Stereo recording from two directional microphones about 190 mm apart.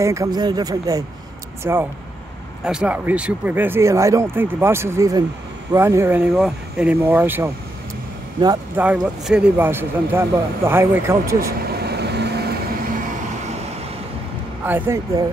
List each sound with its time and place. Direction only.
0.0 s speech: 15° right (ahead or behind)
8.7 s speech: 5° right (ahead or behind)
11.7 s vehicle: 60° right (ahead or behind)
14.6 s speech: 10° right (ahead or behind)